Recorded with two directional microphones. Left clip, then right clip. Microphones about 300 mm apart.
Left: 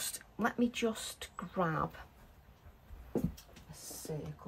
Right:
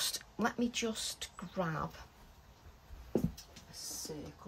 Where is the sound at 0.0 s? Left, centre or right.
Centre.